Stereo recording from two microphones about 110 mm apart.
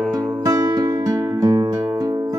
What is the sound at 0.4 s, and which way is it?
Music, 35° right (ahead or behind).